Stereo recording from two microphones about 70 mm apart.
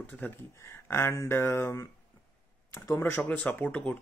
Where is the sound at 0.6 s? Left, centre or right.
Left.